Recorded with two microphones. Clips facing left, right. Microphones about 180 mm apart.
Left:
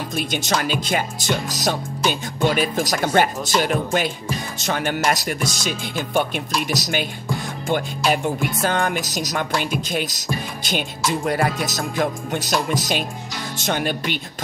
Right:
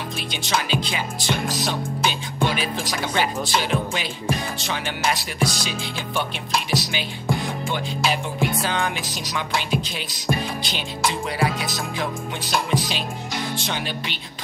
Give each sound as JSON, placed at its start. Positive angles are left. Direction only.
{"t": 0.1, "sound": "speech", "side_deg": 45}